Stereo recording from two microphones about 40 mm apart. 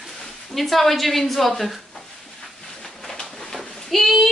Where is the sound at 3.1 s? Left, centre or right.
Centre.